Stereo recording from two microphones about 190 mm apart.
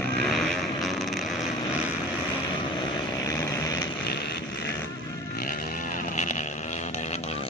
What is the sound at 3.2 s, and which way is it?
Vehicle, 15° left (ahead or behind).